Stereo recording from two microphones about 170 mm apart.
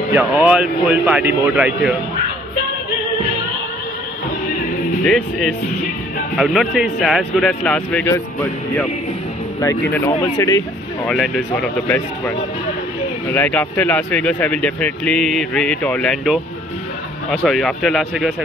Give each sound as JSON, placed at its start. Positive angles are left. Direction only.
{"t": 0.1, "sound": "a man's voice", "side_deg": -10}
{"t": 5.0, "sound": "speech", "side_deg": 5}
{"t": 11.1, "sound": "speech", "side_deg": 5}